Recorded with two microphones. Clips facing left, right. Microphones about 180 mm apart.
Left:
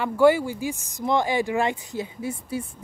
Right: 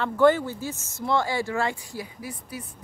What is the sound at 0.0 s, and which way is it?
Speech, 10° left (ahead or behind).